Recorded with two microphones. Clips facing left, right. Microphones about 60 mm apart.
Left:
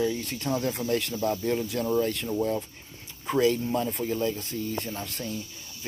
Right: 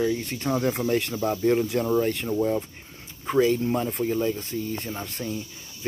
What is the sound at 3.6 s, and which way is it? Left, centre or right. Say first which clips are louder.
Speech: right 3 dB; right.